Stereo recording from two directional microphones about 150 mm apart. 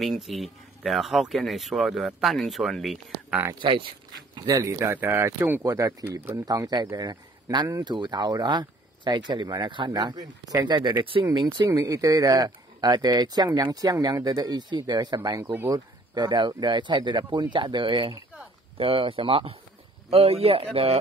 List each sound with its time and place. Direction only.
0.0 s speech: centre (ahead or behind)
3.6 s speech: 35° right (ahead or behind)
4.4 s speech: 25° right (ahead or behind)
11.6 s speech: 20° right (ahead or behind); by 21.0 s 40° right (ahead or behind)